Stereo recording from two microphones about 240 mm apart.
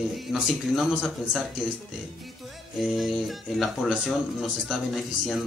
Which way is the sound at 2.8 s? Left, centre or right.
Centre.